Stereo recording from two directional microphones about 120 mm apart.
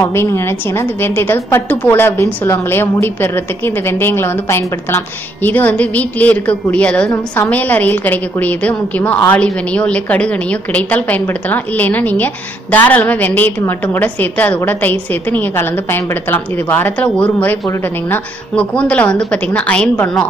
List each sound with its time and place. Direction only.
0.0 s a woman's voice: 20° left (ahead or behind)